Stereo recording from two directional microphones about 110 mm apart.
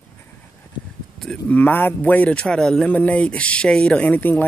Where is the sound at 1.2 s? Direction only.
10° left (ahead or behind).